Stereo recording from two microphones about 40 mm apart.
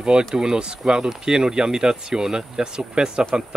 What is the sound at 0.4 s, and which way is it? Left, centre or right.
Speech, right.